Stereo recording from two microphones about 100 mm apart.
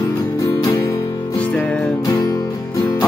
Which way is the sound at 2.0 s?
40° left (ahead or behind).